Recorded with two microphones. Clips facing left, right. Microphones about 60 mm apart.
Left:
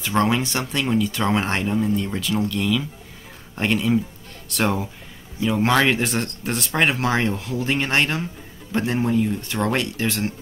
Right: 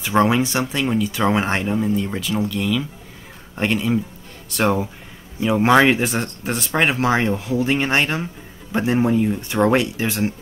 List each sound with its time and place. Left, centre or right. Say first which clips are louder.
0.0 s speech: right 3 dB; centre
5.4 s speech: right 4 dB; centre
5.9 s speech: right 2 dB; centre